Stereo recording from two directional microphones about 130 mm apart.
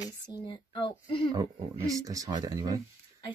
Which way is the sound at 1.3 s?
25° right (ahead or behind).